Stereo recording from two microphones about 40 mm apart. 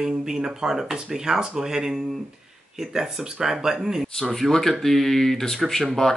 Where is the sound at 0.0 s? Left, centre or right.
Centre.